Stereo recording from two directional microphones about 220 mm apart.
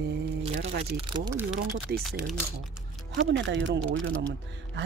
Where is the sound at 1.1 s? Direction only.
20° right (ahead or behind).